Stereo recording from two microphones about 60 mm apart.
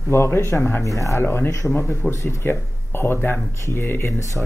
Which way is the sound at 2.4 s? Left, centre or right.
Left.